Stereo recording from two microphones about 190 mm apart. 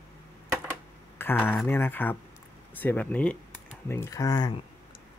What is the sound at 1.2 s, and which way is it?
Speech, 10° left (ahead or behind).